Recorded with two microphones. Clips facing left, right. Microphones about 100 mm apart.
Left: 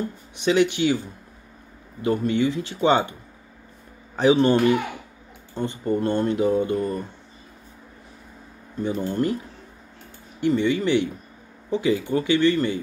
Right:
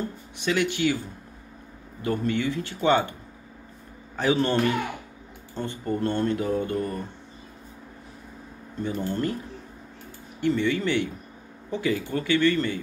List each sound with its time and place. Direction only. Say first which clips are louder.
0.4 s speech: left 5 dB; 20° left (ahead or behind)
4.2 s speech: left 6 dB; 20° left (ahead or behind)
5.6 s speech: left 4 dB; 20° left (ahead or behind)
8.8 s speech: left 4 dB; 20° left (ahead or behind)
10.4 s speech: left 3 dB; 20° left (ahead or behind)